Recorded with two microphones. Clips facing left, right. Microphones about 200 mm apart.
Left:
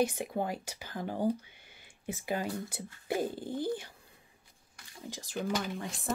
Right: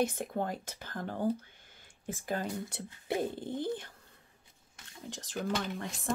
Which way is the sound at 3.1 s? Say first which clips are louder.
Even; 5° left (ahead or behind).